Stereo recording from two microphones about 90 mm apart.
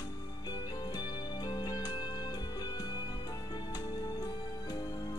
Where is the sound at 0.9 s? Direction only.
50° left (ahead or behind).